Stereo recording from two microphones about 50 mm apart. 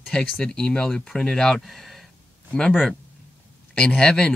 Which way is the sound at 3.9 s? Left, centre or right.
Centre.